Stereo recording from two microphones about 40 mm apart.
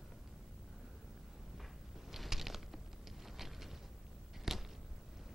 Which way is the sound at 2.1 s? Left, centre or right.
Centre.